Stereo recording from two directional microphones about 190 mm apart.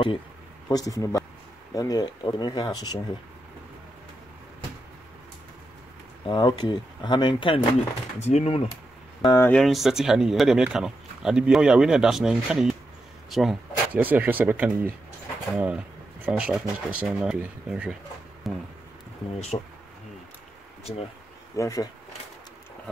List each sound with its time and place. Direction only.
0.7 s speech: 15° left (ahead or behind)
6.2 s speech: 25° left (ahead or behind)
9.2 s speech: 20° left (ahead or behind)
9.5 s speech: centre (ahead or behind)
19.5 s speech: 25° left (ahead or behind)
21.5 s speech: 15° left (ahead or behind)